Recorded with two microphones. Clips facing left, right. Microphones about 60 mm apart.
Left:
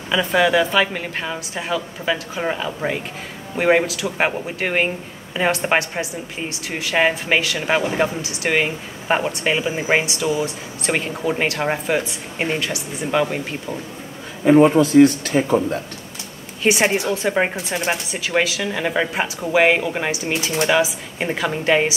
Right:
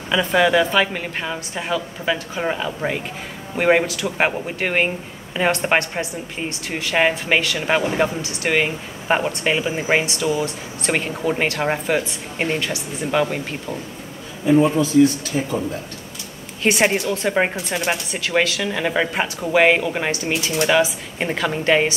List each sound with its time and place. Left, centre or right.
0.1 s speech: centre
14.4 s a man's voice: left
16.6 s speech: centre